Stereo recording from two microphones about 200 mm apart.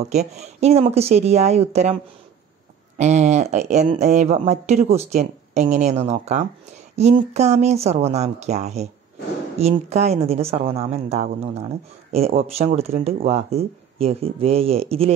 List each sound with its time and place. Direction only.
0.0 s speech: 35° right (ahead or behind)
3.0 s speech: 35° right (ahead or behind)
12.4 s speech: 30° right (ahead or behind)